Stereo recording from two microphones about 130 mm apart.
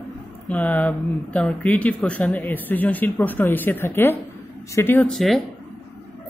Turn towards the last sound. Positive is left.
turn(degrees=0)  # may be behind; listen again after turning